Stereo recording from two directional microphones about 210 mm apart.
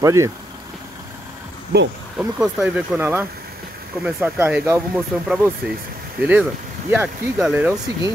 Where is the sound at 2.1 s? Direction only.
5° right (ahead or behind).